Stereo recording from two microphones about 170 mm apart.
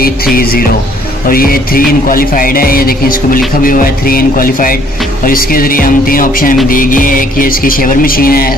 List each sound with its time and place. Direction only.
0.0 s music: 60° left (ahead or behind)